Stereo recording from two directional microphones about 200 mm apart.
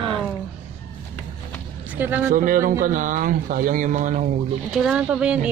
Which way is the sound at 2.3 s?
40° right (ahead or behind).